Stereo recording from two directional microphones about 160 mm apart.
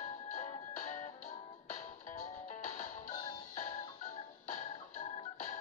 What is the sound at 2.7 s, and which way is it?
Music, 50° left (ahead or behind).